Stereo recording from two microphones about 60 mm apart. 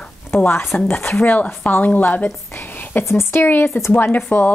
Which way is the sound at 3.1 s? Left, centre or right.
Left.